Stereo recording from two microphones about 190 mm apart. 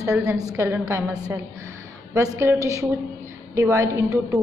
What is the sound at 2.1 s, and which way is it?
A woman's voice, 15° right (ahead or behind).